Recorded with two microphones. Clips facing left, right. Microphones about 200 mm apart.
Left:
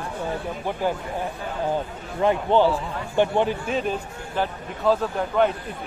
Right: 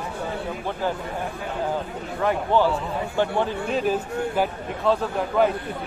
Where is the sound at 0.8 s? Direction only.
15° left (ahead or behind).